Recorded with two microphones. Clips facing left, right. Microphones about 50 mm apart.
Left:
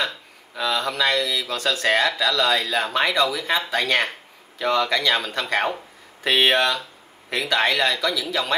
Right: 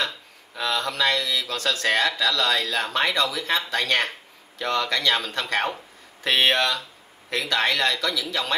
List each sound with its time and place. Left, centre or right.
0.6 s speech: centre